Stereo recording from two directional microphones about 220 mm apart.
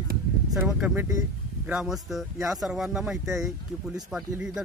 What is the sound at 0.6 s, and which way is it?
Speech, 5° right (ahead or behind).